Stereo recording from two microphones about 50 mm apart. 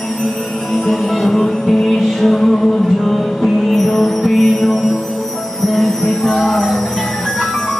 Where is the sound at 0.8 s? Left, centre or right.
Centre.